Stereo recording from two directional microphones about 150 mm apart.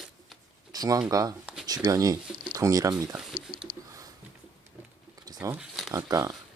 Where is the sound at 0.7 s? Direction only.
25° right (ahead or behind).